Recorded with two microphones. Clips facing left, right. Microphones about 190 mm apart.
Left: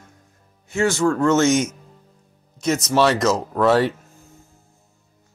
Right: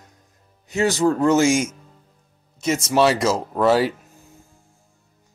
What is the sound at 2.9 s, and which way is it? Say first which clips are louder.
Speech: even; 5° right (ahead or behind).